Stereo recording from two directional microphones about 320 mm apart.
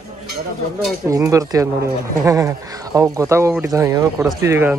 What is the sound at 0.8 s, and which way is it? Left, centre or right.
Speech, centre.